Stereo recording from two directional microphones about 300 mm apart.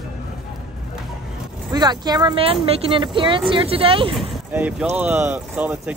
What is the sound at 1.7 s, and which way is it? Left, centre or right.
Speech, centre.